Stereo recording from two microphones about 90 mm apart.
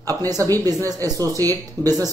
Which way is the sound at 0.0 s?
40° right (ahead or behind).